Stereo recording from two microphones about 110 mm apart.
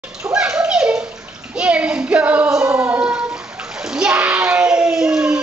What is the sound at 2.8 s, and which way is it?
Bathtub, 15° right (ahead or behind).